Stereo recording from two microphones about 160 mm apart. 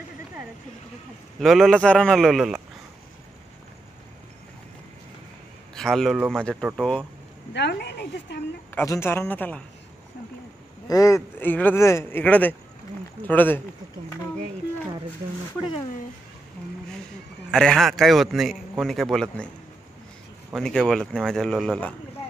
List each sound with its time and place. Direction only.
1.4 s a man's voice: centre (ahead or behind)
5.8 s a man's voice: 5° left (ahead or behind)
7.5 s a woman's voice: 90° left
8.7 s speech: 15° left (ahead or behind)
10.9 s speech: 20° left (ahead or behind)
17.5 s a man's voice: 5° left (ahead or behind)
20.5 s a man's voice: 5° left (ahead or behind)